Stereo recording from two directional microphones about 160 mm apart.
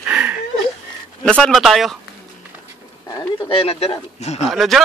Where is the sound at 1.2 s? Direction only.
5° left (ahead or behind).